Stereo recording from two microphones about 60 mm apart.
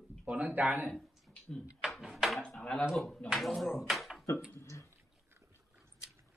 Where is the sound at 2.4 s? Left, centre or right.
Centre.